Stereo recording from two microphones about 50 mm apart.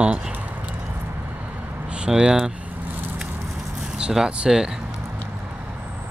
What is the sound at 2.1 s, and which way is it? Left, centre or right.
Speech, centre.